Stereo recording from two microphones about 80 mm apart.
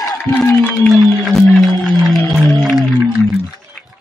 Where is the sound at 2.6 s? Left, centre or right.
Centre.